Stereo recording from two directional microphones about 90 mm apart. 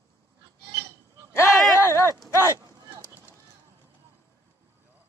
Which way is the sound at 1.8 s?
30° left (ahead or behind).